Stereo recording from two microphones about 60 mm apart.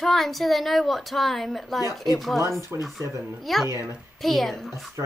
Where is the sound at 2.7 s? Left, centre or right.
Right.